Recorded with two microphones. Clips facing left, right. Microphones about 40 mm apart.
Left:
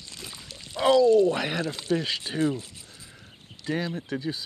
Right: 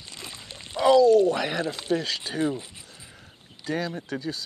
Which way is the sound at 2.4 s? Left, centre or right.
Right.